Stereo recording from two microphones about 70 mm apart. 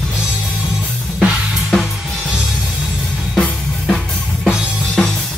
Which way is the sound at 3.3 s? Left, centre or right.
Centre.